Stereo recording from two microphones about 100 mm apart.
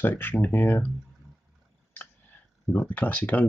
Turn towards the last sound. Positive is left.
turn(degrees=15)  # may be behind; listen again after turning